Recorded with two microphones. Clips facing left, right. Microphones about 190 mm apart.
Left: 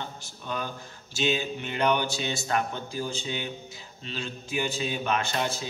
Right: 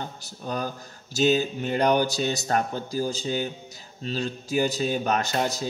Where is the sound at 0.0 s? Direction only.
40° right (ahead or behind).